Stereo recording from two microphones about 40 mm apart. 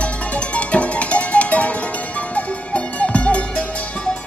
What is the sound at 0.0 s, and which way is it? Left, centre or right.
Music, left.